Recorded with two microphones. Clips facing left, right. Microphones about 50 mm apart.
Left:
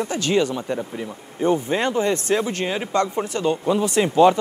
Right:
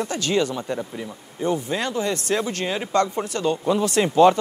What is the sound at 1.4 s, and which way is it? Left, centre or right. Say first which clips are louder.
Speech: left 4 dB; left.